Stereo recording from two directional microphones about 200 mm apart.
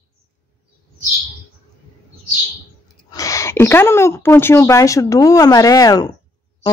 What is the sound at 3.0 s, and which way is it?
Speech, 15° left (ahead or behind).